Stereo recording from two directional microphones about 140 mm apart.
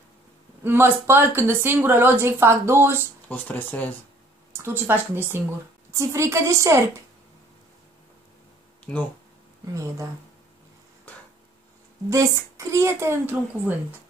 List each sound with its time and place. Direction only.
0.7 s a woman's voice: 15° right (ahead or behind)
3.3 s speech: 10° left (ahead or behind)
4.5 s a woman's voice: 15° right (ahead or behind)
12.1 s a woman's voice: 20° right (ahead or behind)